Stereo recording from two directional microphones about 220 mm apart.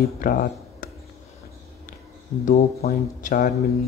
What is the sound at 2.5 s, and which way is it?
Speech, 35° left (ahead or behind).